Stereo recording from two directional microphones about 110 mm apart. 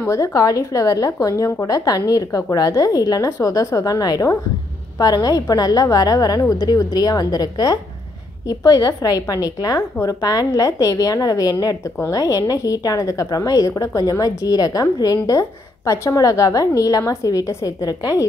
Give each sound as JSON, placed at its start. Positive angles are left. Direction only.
{"t": 0.0, "sound": "a woman's voice", "side_deg": 30}